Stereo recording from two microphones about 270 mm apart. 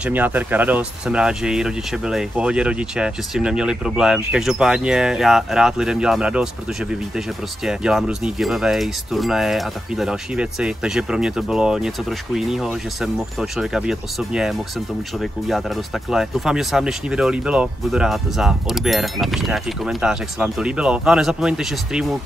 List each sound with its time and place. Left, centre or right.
0.0 s speech: centre